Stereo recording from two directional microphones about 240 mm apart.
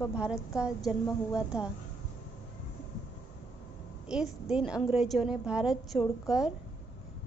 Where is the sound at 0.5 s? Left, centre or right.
Centre.